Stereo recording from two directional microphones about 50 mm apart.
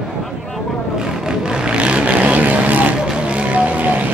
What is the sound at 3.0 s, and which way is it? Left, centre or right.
Vehicle, right.